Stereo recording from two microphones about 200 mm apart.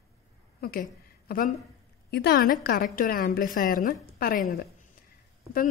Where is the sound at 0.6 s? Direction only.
45° left (ahead or behind).